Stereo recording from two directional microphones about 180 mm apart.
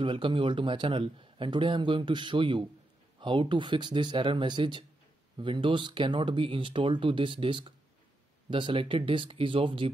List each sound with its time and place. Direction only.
0.0 s a man's voice: 25° right (ahead or behind)